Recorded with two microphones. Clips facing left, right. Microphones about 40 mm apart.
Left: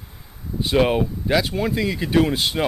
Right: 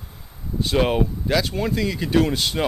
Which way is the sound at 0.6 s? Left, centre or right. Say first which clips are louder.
Left 2 dB; centre.